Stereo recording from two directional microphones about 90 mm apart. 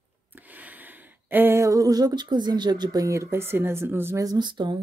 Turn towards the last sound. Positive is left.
turn(degrees=-55)  # may be behind; listen again after turning